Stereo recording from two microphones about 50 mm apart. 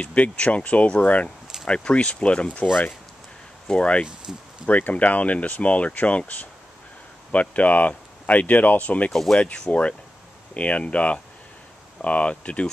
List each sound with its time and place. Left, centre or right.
0.0 s speech: left
3.6 s speech: left
7.3 s speech: left
9.1 s speech: centre
9.7 s speech: left